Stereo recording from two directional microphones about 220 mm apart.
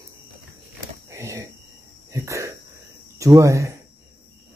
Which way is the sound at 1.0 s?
15° right (ahead or behind).